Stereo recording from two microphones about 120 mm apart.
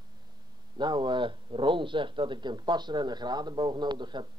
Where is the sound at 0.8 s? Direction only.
40° right (ahead or behind).